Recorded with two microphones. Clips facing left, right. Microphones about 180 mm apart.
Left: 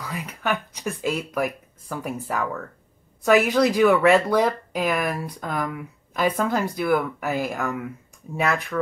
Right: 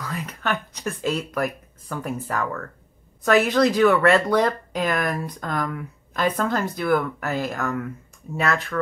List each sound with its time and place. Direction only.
0.0 s speech: 10° left (ahead or behind)